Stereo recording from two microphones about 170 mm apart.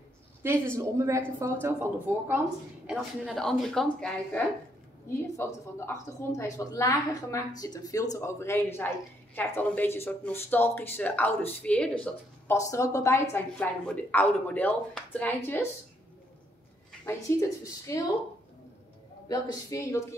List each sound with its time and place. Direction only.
0.4 s speech: 15° right (ahead or behind)
2.9 s speech: centre (ahead or behind)
5.2 s a woman's voice: 15° left (ahead or behind)
17.0 s a woman's voice: 15° left (ahead or behind)
19.2 s a woman's voice: 20° left (ahead or behind)